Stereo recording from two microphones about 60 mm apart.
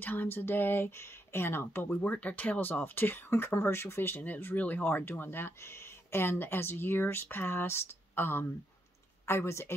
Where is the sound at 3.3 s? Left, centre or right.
Left.